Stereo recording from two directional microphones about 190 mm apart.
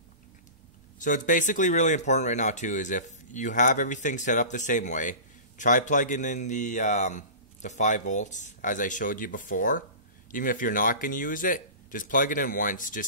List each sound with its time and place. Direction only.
0.9 s a man's voice: 45° left (ahead or behind)